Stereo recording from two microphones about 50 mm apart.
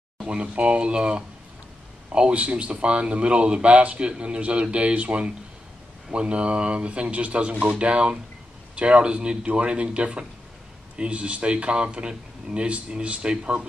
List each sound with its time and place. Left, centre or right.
0.2 s speech: right